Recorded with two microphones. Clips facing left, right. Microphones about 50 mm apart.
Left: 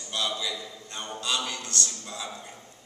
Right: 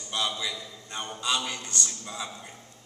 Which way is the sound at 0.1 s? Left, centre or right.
Centre.